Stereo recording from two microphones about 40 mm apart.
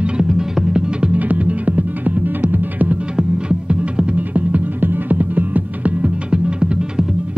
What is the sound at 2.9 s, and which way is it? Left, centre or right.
Music, right.